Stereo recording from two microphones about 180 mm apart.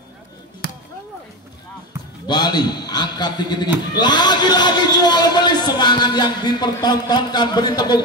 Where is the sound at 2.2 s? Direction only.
25° left (ahead or behind).